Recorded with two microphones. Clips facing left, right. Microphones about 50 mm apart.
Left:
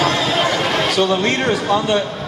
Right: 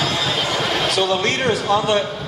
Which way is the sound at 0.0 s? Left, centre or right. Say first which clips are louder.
Left 5 dB; left.